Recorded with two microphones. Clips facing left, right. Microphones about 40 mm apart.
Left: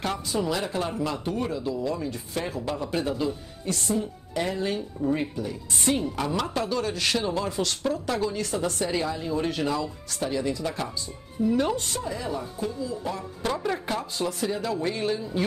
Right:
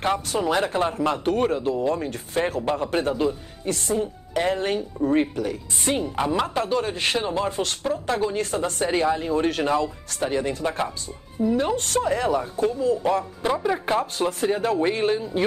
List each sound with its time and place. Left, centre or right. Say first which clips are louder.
0.4 s speech: right 4 dB; right
5.9 s speech: right 3 dB; right
11.7 s speech: right 7 dB; right
13.4 s speech: right 4 dB; centre
14.2 s speech: right 5 dB; right